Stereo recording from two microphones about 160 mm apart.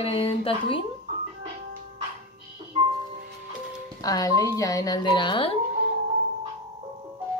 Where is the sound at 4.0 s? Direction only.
20° left (ahead or behind).